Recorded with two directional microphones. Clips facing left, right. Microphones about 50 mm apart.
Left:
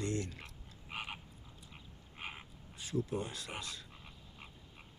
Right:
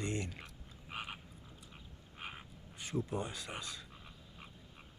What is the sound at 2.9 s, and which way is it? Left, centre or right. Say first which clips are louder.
Speech: left 1 dB; right.